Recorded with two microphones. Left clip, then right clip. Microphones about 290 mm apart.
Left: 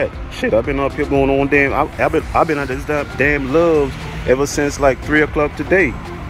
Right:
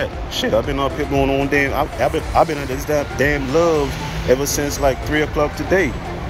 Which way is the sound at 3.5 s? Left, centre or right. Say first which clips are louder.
Left 2 dB; left.